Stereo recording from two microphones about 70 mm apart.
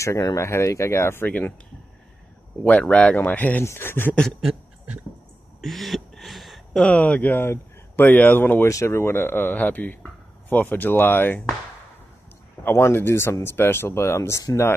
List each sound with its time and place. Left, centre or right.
0.0 s speech: left
1.2 s speech: left
2.6 s speech: centre
3.6 s speech: left
4.1 s a sound: centre
5.6 s a sound: centre
6.8 s speech: left
8.6 s speech: left
12.6 s speech: left